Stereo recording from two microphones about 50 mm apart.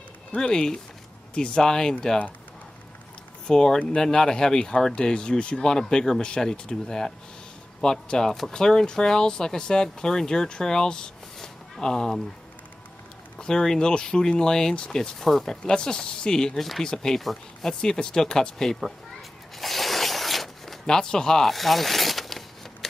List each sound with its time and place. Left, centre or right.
0.4 s speech: centre
3.4 s speech: centre
11.3 s a sound: centre
13.4 s speech: centre
19.6 s zipper: centre